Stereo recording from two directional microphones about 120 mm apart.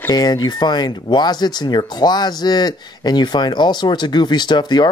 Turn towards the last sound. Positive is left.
turn(degrees=35)  # may be behind; listen again after turning